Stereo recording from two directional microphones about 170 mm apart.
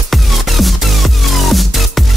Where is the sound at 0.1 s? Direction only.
Centre (ahead or behind).